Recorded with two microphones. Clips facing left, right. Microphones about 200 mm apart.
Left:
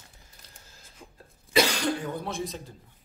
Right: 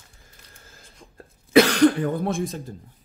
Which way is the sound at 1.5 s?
55° right (ahead or behind).